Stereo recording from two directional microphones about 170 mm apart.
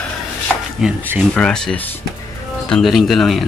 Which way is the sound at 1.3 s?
5° left (ahead or behind).